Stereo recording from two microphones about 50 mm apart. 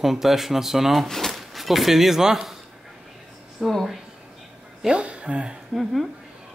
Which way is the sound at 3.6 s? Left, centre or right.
Centre.